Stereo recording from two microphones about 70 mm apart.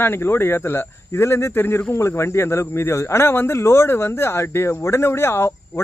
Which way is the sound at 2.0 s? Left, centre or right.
Left.